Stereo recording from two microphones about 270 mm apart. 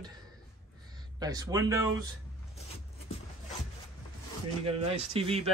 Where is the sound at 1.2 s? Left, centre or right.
Centre.